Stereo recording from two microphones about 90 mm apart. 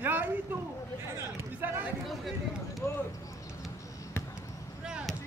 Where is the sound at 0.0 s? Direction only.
20° right (ahead or behind).